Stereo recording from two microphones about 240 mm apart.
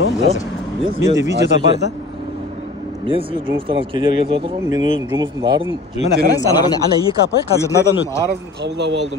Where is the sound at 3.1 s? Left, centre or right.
Right.